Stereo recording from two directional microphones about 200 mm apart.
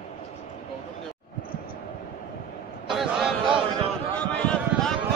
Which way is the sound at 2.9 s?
Centre (ahead or behind).